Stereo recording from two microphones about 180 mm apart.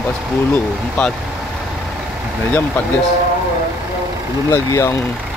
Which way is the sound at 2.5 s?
10° left (ahead or behind).